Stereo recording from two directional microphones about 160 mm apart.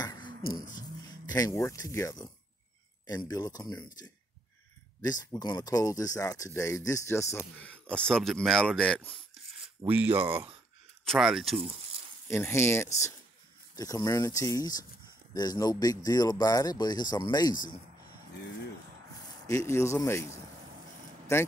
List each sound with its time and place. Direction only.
0.0 s a sound: 25° left (ahead or behind)
0.7 s speech: 25° left (ahead or behind); by 9.2 s 5° left (ahead or behind)
9.8 s speech: 15° right (ahead or behind)
11.1 s speech: centre (ahead or behind)
12.3 s speech: 15° left (ahead or behind)
19.4 s speech: 20° left (ahead or behind)